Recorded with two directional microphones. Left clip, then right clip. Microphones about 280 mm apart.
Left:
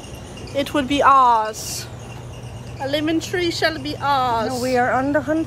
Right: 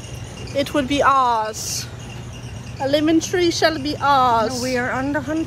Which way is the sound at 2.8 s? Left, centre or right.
Centre.